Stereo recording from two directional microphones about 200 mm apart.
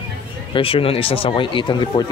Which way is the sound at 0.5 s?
25° left (ahead or behind).